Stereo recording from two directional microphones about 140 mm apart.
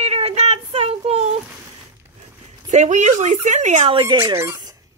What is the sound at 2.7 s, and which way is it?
Speech, 60° right (ahead or behind).